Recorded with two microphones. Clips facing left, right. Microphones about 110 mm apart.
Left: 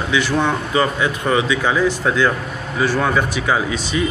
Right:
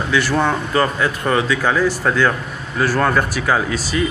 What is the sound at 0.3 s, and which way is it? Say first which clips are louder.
Speech: right 1 dB; 10° right (ahead or behind).